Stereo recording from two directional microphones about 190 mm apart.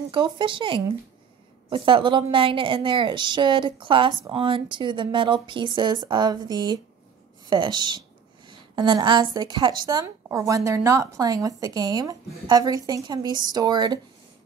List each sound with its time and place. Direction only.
0.1 s a woman's voice: 25° right (ahead or behind)